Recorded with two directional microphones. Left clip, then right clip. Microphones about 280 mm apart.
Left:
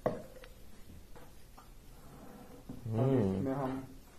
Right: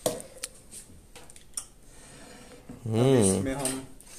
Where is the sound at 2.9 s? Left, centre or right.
Right.